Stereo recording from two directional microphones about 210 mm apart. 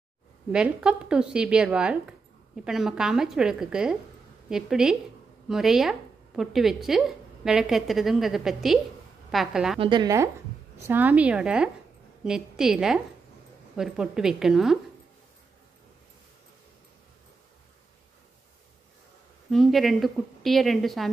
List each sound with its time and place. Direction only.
0.5 s speech: 5° right (ahead or behind)
9.8 s a woman's voice: 20° right (ahead or behind); by 14.8 s centre (ahead or behind)
19.5 s speech: centre (ahead or behind)